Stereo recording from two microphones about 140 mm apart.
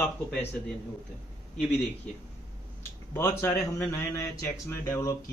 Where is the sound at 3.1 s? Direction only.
15° left (ahead or behind).